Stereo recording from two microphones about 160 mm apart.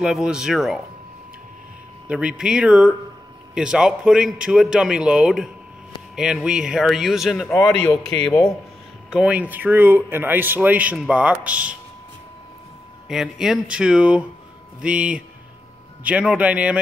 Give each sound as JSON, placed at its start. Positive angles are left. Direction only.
{"t": 0.0, "sound": "a man's voice", "side_deg": -5}
{"t": 2.0, "sound": "a man's voice", "side_deg": -5}
{"t": 9.1, "sound": "speech", "side_deg": -5}
{"t": 13.1, "sound": "a man's voice", "side_deg": -5}